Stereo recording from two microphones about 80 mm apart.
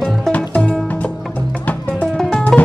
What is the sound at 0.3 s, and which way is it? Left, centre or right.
Music, centre.